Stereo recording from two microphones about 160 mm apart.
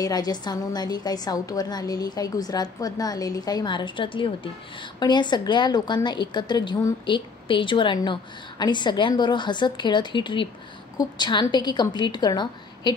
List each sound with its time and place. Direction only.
0.0 s a woman's voice: 25° left (ahead or behind)